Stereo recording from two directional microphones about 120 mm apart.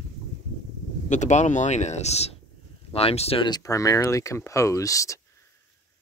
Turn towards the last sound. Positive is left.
turn(degrees=25)  # may be behind; listen again after turning